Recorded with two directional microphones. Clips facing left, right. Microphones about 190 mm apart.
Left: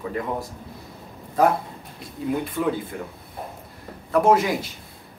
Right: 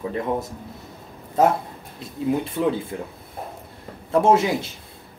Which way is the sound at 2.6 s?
25° right (ahead or behind).